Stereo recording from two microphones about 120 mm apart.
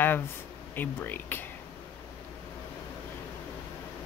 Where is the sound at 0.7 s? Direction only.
15° left (ahead or behind).